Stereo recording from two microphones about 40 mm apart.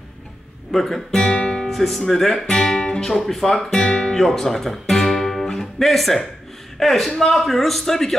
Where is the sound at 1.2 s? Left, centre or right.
Centre.